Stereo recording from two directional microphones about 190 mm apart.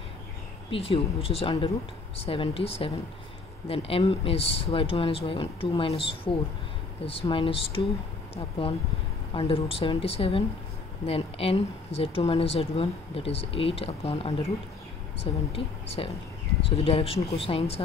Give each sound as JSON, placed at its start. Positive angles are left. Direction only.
{"t": 0.7, "sound": "speech", "side_deg": 30}
{"t": 15.5, "sound": "speech", "side_deg": 30}